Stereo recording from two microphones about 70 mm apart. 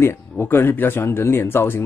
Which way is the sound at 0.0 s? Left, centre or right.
Left.